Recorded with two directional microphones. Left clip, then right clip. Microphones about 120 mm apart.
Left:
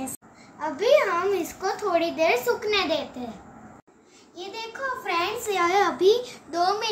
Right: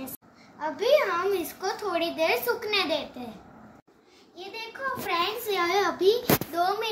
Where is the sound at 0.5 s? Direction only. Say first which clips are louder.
Left 3 dB; 5° left (ahead or behind).